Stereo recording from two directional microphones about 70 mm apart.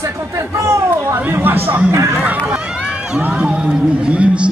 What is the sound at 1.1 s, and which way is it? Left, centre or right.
Speech, right.